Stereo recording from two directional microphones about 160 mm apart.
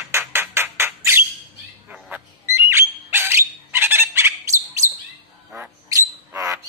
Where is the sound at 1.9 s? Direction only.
10° right (ahead or behind).